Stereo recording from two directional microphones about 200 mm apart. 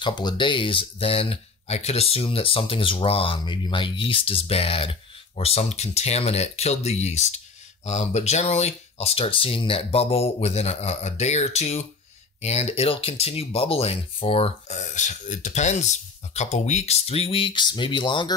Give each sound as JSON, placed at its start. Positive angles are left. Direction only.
{"t": 0.0, "sound": "speech", "side_deg": 20}